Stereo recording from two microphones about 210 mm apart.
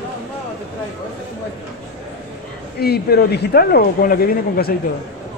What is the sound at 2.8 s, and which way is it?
Speech, 50° left (ahead or behind).